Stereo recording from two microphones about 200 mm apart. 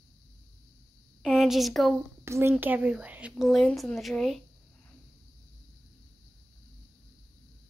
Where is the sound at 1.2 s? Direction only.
Centre (ahead or behind).